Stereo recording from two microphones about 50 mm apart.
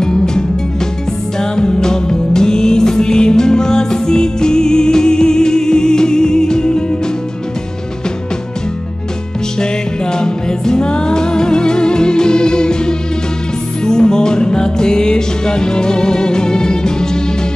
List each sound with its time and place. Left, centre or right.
0.0 s music: centre
10.1 s music: centre